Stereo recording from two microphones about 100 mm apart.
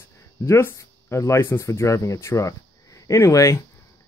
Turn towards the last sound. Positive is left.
turn(degrees=30)  # may be behind; listen again after turning